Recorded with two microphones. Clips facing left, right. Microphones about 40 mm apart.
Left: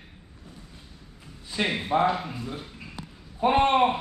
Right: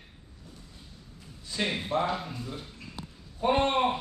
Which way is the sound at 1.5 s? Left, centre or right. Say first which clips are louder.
Left 4 dB; left.